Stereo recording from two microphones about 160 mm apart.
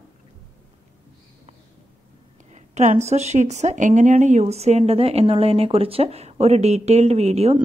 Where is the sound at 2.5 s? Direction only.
45° right (ahead or behind).